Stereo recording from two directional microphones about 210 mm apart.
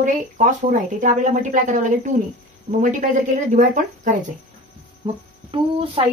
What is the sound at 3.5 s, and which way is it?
Speech, 35° right (ahead or behind).